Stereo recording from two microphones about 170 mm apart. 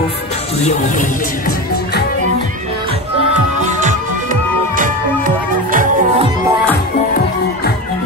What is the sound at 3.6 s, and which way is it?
Music, 50° right (ahead or behind).